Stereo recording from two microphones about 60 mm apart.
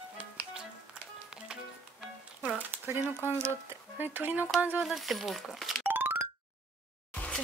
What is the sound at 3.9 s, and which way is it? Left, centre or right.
Speech, right.